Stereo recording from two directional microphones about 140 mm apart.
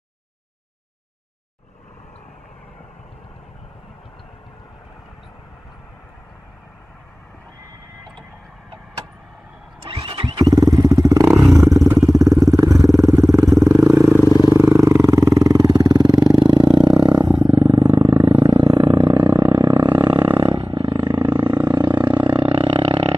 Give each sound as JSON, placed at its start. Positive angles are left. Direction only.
{"t": 9.8, "sound": "vehicle", "side_deg": -35}
{"t": 10.4, "sound": "vehicle", "side_deg": -25}
{"t": 21.2, "sound": "roar", "side_deg": -25}